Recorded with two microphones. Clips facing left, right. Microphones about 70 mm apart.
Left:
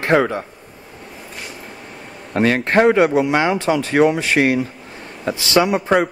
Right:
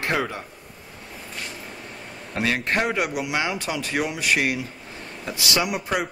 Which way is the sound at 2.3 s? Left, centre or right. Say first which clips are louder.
Left 9 dB; left.